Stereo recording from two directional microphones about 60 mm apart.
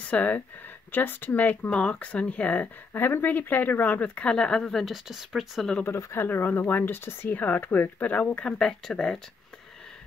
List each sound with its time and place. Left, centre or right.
0.1 s speech: left
2.9 s speech: left; by 5.7 s centre
5.9 s speech: left
6.1 s speech: left
8.5 s speech: centre